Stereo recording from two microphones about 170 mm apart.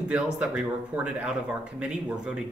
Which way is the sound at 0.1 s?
5° right (ahead or behind).